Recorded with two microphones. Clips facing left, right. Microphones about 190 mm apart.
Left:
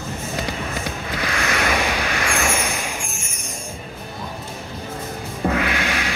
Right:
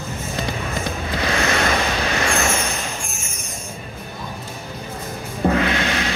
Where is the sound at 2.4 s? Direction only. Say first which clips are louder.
Right 1 dB; 10° left (ahead or behind).